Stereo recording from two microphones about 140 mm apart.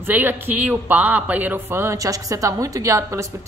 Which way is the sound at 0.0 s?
15° right (ahead or behind).